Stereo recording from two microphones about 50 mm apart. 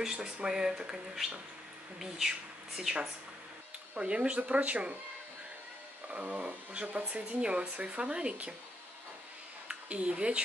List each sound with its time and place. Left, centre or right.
0.0 s speech: centre
6.0 s speech: right
9.7 s speech: right